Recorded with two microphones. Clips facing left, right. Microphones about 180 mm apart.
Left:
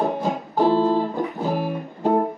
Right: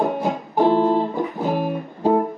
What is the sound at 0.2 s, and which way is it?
Music, 20° right (ahead or behind).